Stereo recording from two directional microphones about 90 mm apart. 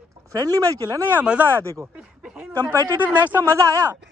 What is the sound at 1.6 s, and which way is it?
Speech, 30° right (ahead or behind).